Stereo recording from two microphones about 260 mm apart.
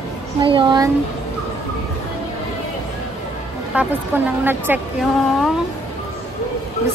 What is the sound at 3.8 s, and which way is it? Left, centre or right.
Speech, centre.